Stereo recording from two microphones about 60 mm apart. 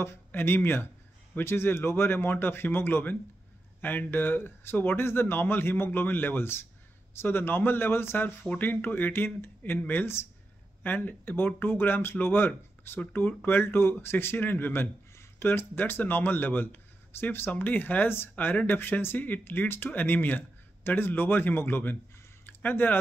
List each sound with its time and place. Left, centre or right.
0.0 s speech: left